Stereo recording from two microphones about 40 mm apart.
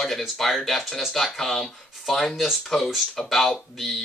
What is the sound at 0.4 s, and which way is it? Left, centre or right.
Speech, centre.